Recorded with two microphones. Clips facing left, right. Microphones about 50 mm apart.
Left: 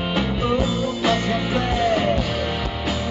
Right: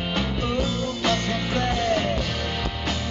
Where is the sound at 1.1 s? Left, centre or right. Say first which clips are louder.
Left 3 dB; centre.